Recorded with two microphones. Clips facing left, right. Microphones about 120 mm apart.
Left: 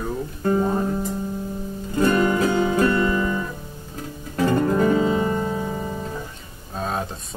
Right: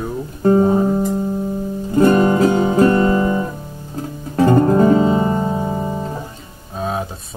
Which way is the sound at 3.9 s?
30° right (ahead or behind).